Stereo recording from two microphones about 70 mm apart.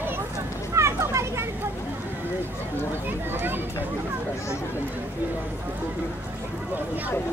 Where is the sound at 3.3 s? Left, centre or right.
Right.